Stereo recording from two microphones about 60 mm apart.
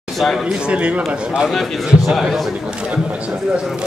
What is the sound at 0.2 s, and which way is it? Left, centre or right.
Speech, centre.